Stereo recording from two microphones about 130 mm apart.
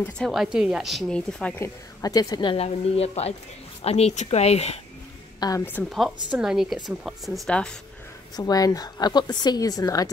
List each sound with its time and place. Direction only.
0.3 s speech: 5° right (ahead or behind)
1.6 s a woman's voice: 25° left (ahead or behind)
2.5 s speech: 50° left (ahead or behind)
5.4 s a woman's voice: 30° left (ahead or behind)
5.9 s speech: centre (ahead or behind)
8.4 s a woman's voice: 30° left (ahead or behind)